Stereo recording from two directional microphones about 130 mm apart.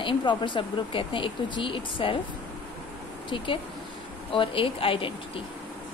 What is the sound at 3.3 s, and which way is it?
Speech, 40° left (ahead or behind).